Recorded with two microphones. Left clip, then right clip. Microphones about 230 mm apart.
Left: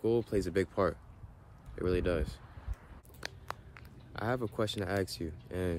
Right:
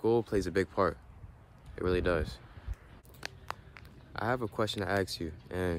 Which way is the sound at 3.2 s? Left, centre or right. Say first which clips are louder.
Right 1 dB; centre.